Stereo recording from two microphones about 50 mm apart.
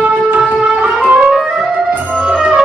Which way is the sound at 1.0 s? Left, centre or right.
Right.